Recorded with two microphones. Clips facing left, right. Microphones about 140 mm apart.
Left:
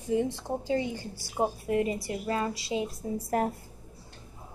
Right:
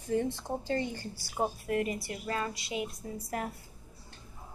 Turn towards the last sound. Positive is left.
turn(degrees=40)  # may be behind; listen again after turning